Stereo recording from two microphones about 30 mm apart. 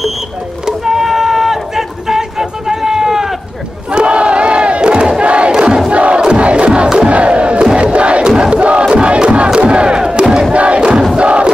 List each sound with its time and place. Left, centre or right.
0.7 s a sound: centre
3.9 s crowd: right
5.5 s crowd: right
5.9 s crowd: right
9.6 s battle cry: right
10.5 s crowd: right